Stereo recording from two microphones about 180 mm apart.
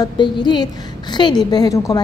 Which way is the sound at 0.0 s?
25° left (ahead or behind).